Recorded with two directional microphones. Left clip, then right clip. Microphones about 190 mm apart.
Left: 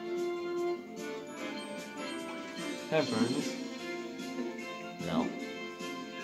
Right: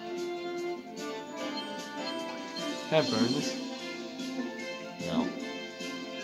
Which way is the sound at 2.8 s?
25° right (ahead or behind).